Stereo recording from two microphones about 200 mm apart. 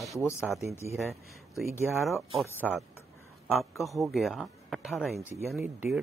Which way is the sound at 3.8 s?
Centre (ahead or behind).